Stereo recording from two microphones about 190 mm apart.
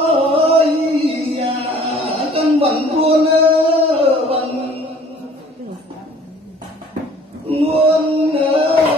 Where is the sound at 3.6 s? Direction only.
30° right (ahead or behind).